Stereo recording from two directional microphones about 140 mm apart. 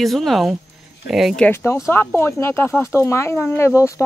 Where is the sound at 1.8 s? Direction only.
15° left (ahead or behind).